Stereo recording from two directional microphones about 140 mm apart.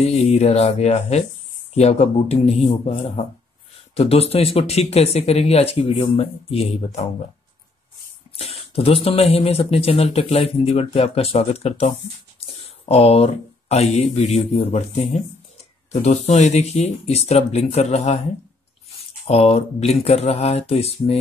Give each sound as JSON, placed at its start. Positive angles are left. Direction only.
{"t": 0.0, "sound": "speech", "side_deg": 50}
{"t": 8.4, "sound": "speech", "side_deg": 45}
{"t": 19.2, "sound": "speech", "side_deg": 50}